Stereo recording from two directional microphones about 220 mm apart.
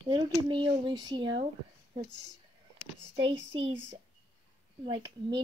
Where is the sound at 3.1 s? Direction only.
25° right (ahead or behind).